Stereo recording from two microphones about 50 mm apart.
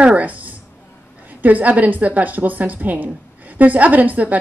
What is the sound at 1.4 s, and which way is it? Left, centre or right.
A woman's voice, right.